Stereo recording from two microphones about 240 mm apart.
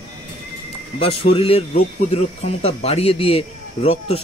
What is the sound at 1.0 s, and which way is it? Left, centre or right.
A man's voice, left.